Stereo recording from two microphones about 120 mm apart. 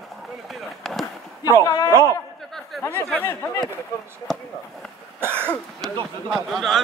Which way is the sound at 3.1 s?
20° left (ahead or behind).